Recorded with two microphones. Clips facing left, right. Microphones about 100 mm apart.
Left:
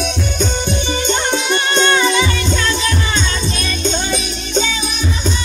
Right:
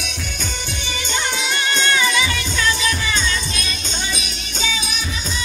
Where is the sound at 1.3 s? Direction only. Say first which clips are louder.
Left 6 dB; 25° left (ahead or behind).